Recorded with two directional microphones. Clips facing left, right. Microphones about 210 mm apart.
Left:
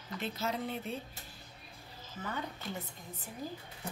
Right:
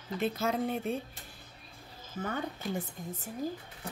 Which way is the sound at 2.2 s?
50° right (ahead or behind).